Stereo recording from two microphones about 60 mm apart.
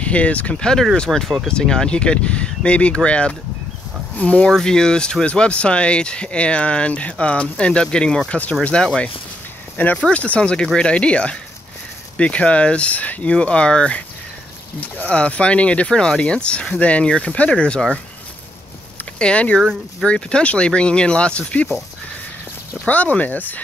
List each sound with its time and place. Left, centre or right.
0.0 s speech: left
4.5 s speech: centre
9.8 s speech: left
19.1 s speech: centre
19.6 s speech: centre
20.1 s speech: centre
22.8 s speech: left